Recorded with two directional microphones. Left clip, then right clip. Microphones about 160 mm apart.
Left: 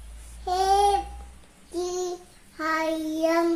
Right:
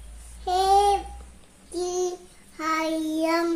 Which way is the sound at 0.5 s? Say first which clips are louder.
Right 1 dB; centre (ahead or behind).